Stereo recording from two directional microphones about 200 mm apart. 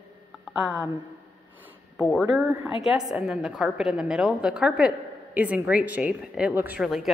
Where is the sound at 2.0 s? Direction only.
5° left (ahead or behind).